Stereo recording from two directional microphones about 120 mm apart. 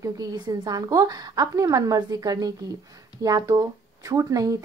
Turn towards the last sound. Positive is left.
turn(degrees=-30)  # may be behind; listen again after turning